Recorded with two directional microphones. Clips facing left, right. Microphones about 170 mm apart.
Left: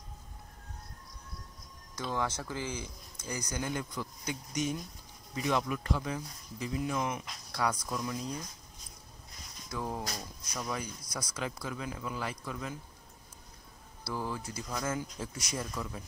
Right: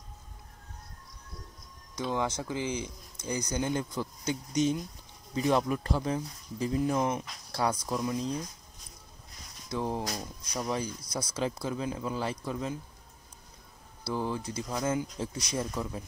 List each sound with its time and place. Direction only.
2.0 s speech: 15° right (ahead or behind)
9.7 s speech: 25° right (ahead or behind)
14.0 s speech: 25° right (ahead or behind)